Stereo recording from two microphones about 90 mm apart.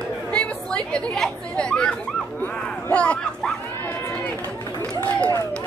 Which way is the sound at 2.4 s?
20° left (ahead or behind).